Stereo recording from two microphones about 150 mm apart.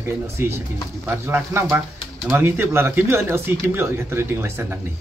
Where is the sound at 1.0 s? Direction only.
15° right (ahead or behind).